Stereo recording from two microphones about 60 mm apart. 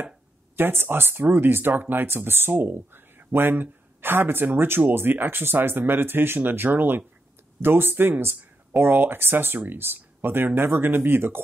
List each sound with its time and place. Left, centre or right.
0.6 s speech: right